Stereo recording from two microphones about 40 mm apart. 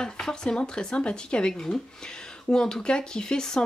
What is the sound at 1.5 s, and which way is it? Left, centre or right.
Speech, centre.